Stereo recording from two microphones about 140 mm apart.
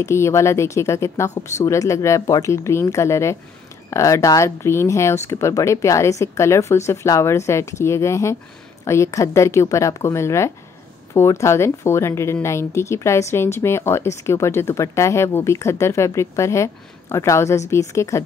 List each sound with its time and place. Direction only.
0.0 s a woman's voice: 20° left (ahead or behind)